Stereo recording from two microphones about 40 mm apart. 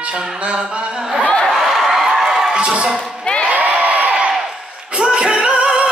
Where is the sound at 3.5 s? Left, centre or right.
Right.